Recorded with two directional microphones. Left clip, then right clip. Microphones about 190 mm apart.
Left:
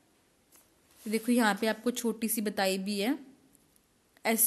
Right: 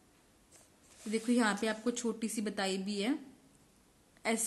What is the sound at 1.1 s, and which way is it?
A woman's voice, 45° left (ahead or behind).